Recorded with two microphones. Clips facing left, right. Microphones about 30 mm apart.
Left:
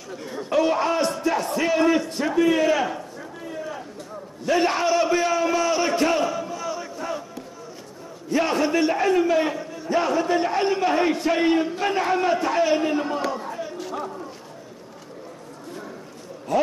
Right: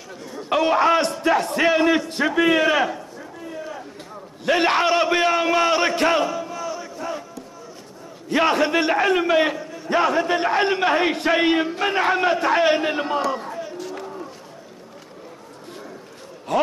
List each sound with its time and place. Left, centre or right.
0.7 s a man's voice: right
1.7 s a man's voice: right
2.2 s a man's voice: right
4.5 s a man's voice: right
8.3 s a man's voice: right
9.9 s a man's voice: right
16.5 s a man's voice: right